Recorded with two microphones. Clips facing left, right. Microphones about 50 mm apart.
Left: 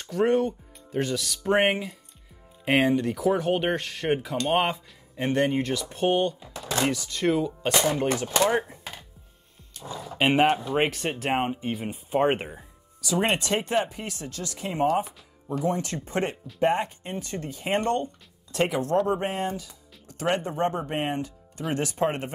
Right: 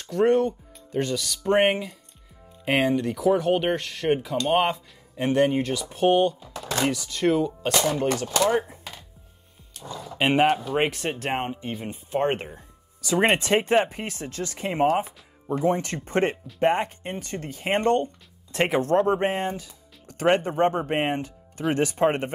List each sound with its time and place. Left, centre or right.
0.0 s speech: centre
9.8 s speech: centre
13.0 s speech: right
16.5 s speech: right